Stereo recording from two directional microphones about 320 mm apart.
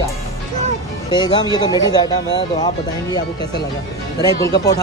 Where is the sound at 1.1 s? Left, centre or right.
Centre.